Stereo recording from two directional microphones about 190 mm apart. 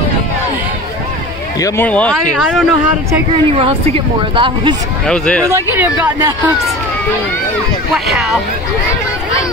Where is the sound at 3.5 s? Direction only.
30° right (ahead or behind).